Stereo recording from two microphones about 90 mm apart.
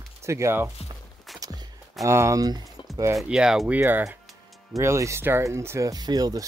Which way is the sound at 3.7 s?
20° right (ahead or behind).